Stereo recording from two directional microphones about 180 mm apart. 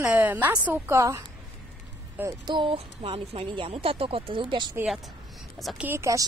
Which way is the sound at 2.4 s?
25° right (ahead or behind).